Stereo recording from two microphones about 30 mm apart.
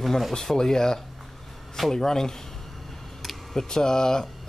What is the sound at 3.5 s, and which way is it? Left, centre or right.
Speech, left.